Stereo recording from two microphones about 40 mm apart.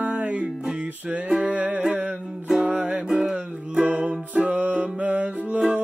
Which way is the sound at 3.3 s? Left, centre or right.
Right.